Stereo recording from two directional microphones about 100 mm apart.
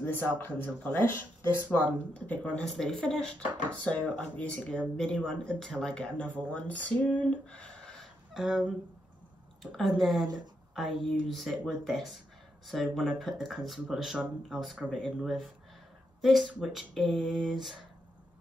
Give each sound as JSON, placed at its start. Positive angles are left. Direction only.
{"t": 0.0, "sound": "speech", "side_deg": 20}
{"t": 2.1, "sound": "speech", "side_deg": 15}
{"t": 8.3, "sound": "speech", "side_deg": -5}
{"t": 10.2, "sound": "a woman's voice", "side_deg": -45}
{"t": 10.7, "sound": "speech", "side_deg": 0}